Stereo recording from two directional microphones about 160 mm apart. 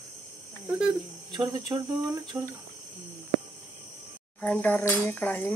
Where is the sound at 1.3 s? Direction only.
25° right (ahead or behind).